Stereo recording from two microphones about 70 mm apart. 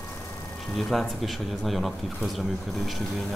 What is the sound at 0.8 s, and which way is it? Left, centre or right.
Speech, centre.